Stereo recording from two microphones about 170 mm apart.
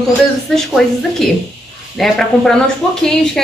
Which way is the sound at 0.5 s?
Centre (ahead or behind).